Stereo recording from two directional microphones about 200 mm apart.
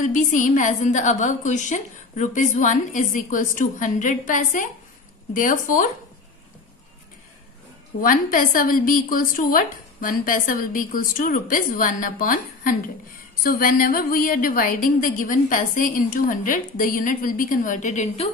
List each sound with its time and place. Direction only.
0.0 s a woman's voice: 40° left (ahead or behind)
8.0 s a woman's voice: 45° left (ahead or behind)